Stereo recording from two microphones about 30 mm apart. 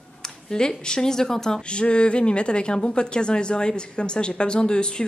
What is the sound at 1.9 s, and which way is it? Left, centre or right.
A woman's voice, left.